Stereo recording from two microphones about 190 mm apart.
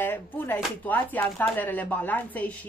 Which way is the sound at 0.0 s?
10° left (ahead or behind).